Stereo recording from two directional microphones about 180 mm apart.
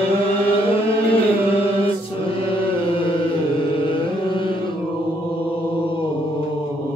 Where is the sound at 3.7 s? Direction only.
30° left (ahead or behind).